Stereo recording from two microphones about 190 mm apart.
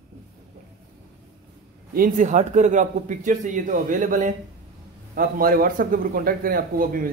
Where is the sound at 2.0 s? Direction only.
45° right (ahead or behind).